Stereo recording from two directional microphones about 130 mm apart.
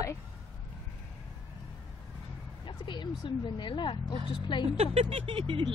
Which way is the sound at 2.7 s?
40° left (ahead or behind).